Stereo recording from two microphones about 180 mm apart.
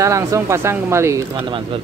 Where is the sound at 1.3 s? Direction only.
30° right (ahead or behind).